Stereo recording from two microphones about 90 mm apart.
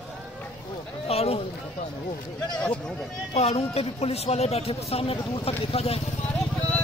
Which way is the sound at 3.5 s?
90° left.